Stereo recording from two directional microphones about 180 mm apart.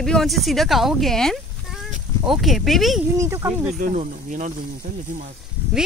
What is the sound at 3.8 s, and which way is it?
Speech, 45° right (ahead or behind).